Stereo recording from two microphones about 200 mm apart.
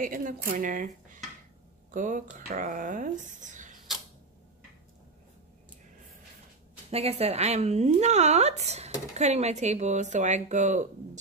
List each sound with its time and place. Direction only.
0.0 s speech: 40° right (ahead or behind)
6.9 s speech: 30° right (ahead or behind)